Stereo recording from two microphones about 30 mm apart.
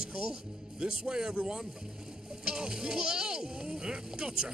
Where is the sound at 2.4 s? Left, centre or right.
Right.